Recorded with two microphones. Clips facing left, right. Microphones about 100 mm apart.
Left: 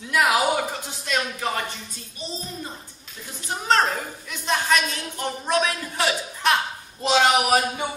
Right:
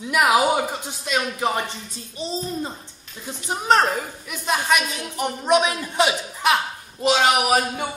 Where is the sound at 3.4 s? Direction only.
15° right (ahead or behind).